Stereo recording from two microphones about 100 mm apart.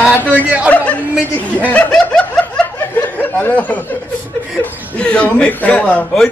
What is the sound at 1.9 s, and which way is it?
Snicker, 10° left (ahead or behind).